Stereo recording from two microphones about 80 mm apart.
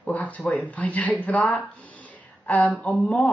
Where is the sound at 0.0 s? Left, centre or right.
Centre.